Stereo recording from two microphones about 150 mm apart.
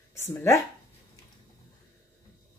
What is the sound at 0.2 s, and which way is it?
Speech, 15° left (ahead or behind).